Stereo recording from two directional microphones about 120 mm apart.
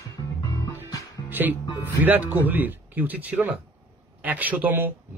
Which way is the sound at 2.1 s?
15° right (ahead or behind).